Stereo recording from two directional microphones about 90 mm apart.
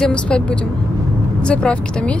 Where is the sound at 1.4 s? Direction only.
10° left (ahead or behind).